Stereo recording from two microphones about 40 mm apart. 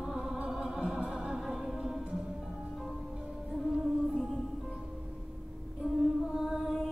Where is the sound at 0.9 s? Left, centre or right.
Centre.